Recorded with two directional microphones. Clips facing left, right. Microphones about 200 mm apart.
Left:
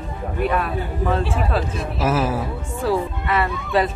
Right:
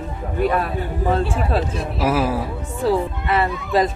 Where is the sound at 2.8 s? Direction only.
30° right (ahead or behind).